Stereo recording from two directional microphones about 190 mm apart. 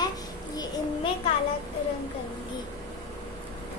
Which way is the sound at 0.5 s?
20° left (ahead or behind).